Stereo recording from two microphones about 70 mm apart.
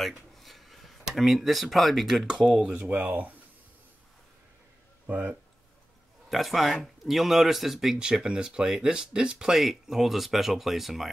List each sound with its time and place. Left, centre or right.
0.0 s speech: centre
2.9 s speech: right
5.0 s speech: centre
6.3 s speech: centre